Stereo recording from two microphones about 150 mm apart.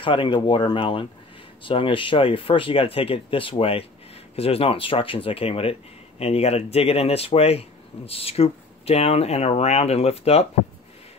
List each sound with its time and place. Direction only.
0.0 s speech: 35° left (ahead or behind)